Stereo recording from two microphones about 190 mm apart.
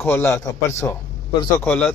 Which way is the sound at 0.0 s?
10° left (ahead or behind).